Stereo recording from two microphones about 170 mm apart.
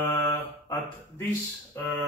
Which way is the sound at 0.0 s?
15° left (ahead or behind).